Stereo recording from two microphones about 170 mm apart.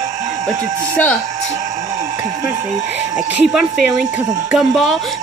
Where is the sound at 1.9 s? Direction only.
15° right (ahead or behind).